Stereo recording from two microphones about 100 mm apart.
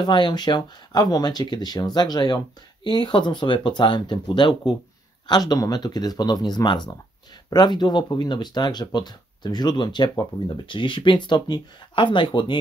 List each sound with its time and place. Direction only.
0.0 s speech: 50° left (ahead or behind)